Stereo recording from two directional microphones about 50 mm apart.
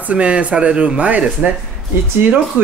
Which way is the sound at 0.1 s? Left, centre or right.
Right.